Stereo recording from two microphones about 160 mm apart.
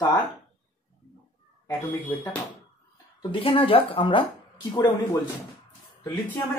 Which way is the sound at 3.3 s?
35° left (ahead or behind).